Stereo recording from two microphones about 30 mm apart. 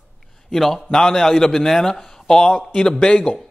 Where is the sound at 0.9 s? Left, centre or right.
Centre.